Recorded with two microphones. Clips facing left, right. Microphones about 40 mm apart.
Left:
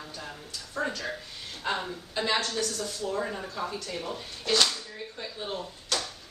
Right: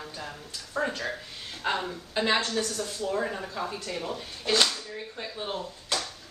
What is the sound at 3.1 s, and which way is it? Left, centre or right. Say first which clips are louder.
Speech: right 3 dB; centre.